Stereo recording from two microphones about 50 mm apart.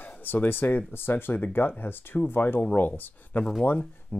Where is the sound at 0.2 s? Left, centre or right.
Left.